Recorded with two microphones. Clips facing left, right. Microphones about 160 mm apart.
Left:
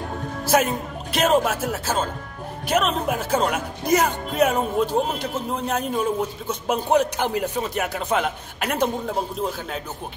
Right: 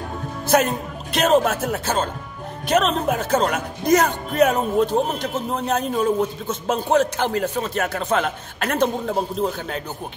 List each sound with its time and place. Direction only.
0.5 s a man's voice: 5° left (ahead or behind)